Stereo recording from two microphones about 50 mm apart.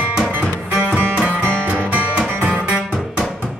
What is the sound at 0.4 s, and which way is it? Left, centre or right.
Music, right.